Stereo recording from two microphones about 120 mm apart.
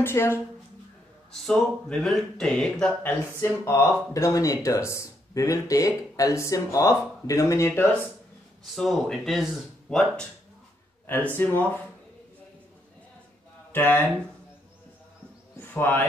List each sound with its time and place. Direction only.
0.0 s speech: 20° left (ahead or behind)
1.3 s speech: 5° left (ahead or behind)
3.0 s speech: 15° left (ahead or behind)
8.6 s speech: centre (ahead or behind)
11.3 s speech: 15° left (ahead or behind)
13.7 s a sound: 15° left (ahead or behind)
15.7 s speech: 15° left (ahead or behind)